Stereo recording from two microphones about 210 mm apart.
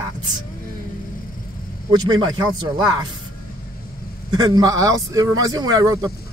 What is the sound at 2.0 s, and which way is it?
Speech, 20° right (ahead or behind).